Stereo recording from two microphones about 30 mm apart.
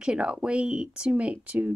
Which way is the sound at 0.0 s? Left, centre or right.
Right.